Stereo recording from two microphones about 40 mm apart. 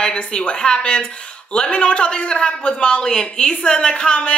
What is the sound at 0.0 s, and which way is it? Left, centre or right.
Speech, left.